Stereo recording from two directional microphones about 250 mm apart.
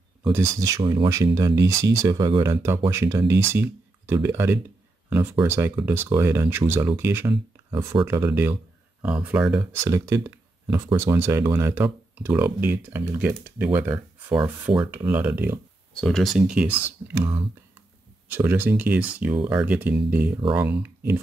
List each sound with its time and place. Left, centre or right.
0.2 s speech: centre
14.3 s speech: centre
15.0 s speech: centre